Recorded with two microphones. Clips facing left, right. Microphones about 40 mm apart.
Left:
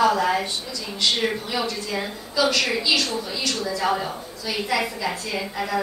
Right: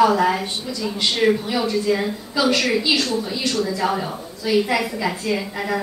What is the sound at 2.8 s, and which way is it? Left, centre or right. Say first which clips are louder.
Speech: right 2 dB; centre.